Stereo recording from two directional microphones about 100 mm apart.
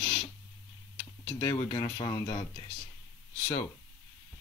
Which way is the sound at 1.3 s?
45° left (ahead or behind).